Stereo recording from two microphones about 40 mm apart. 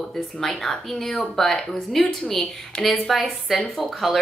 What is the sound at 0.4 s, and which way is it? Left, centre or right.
Speech, centre.